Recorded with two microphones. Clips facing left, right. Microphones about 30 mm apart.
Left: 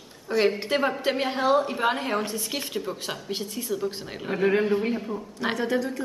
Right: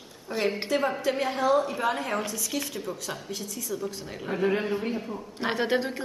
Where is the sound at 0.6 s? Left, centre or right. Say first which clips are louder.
Left 2 dB; left.